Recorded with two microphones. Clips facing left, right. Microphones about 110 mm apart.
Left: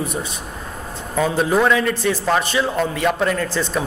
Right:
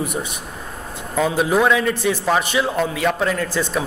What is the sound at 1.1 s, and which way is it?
Speech, 5° right (ahead or behind).